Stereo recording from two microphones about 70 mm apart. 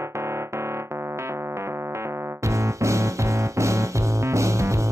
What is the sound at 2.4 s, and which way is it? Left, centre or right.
Music, right.